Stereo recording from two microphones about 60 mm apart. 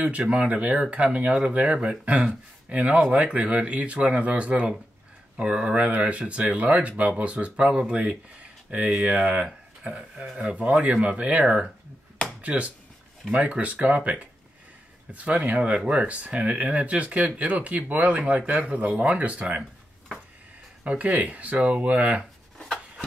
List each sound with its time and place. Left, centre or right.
0.2 s speech: centre
9.5 s a sound: centre
10.4 s speech: right
20.8 s speech: right